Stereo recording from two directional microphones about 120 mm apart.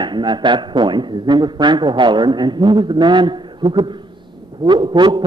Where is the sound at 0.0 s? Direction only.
40° right (ahead or behind).